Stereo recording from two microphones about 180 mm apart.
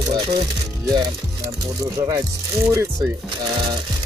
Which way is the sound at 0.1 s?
25° right (ahead or behind).